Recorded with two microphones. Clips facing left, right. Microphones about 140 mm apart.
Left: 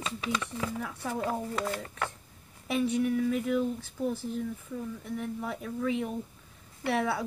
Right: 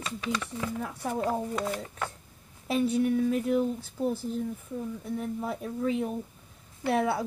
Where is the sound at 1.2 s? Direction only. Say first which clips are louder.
Right 2 dB; 20° right (ahead or behind).